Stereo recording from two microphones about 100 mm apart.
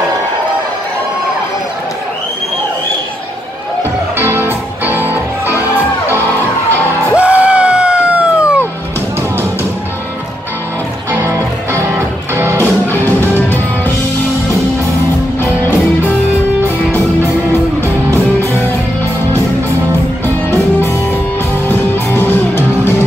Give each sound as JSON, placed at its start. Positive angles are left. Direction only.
{"t": 4.2, "sound": "music", "side_deg": -25}
{"t": 7.2, "sound": "music", "side_deg": -10}
{"t": 11.1, "sound": "music", "side_deg": -25}
{"t": 21.6, "sound": "music", "side_deg": 20}